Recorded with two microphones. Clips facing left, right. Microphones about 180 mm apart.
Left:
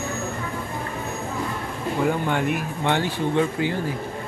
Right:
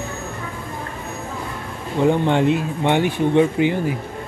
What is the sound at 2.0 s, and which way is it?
Speech, 25° right (ahead or behind).